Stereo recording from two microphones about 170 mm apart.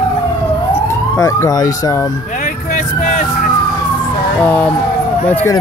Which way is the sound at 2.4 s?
45° left (ahead or behind).